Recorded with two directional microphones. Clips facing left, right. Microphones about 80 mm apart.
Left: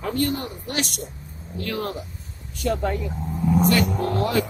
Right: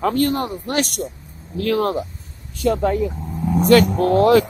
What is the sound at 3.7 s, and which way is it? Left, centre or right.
Speech, right.